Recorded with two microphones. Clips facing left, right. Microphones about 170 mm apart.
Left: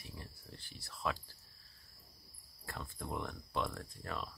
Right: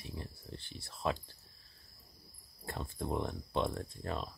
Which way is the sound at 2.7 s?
25° right (ahead or behind).